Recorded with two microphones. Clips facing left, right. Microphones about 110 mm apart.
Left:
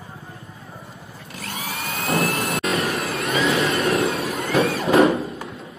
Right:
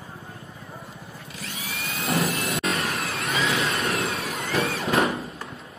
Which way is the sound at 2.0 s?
Centre (ahead or behind).